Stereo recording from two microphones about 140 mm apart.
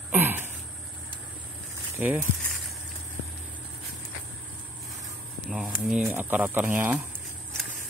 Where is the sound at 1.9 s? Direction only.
10° right (ahead or behind).